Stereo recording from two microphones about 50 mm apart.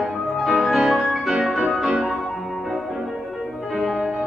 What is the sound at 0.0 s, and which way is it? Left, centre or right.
Music, centre.